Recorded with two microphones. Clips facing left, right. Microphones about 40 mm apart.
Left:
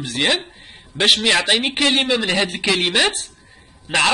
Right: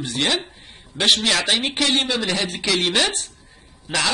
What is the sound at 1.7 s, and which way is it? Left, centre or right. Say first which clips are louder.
Speech: left 3 dB; left.